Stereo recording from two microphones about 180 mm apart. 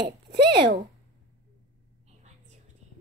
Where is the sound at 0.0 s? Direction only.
65° right (ahead or behind).